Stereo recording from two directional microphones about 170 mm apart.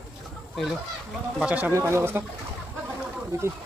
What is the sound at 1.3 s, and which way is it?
Speech, 5° right (ahead or behind).